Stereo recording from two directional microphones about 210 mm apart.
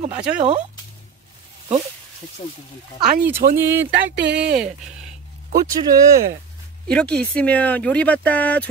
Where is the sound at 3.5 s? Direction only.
10° right (ahead or behind).